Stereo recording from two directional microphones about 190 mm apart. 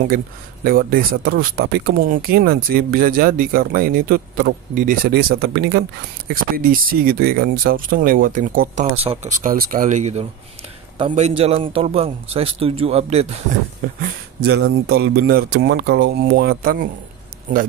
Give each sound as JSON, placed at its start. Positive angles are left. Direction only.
{"t": 0.7, "sound": "speech", "side_deg": -50}
{"t": 5.4, "sound": "speech", "side_deg": -65}
{"t": 8.9, "sound": "a man's voice", "side_deg": -30}
{"t": 13.9, "sound": "speech", "side_deg": -50}